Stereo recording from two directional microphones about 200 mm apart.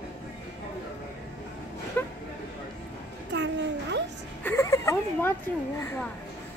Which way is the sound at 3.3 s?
60° right (ahead or behind).